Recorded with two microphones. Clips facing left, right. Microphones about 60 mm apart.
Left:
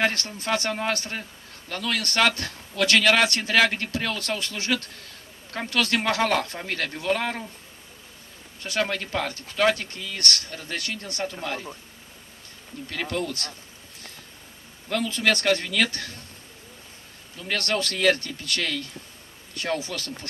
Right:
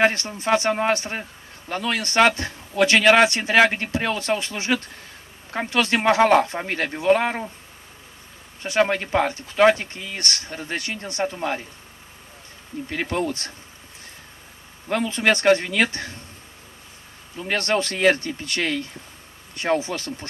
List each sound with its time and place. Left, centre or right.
0.0 s speech: right
8.6 s speech: right
12.9 s speech: right
14.9 s speech: right
17.4 s speech: right